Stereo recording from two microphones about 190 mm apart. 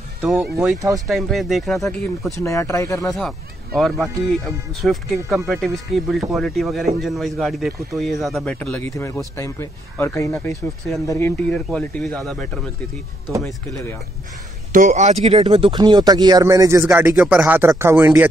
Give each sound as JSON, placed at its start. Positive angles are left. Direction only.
{"t": 0.2, "sound": "speech", "side_deg": 0}
{"t": 2.4, "sound": "speech", "side_deg": 15}
{"t": 3.2, "sound": "speech", "side_deg": 0}
{"t": 14.7, "sound": "speech", "side_deg": -40}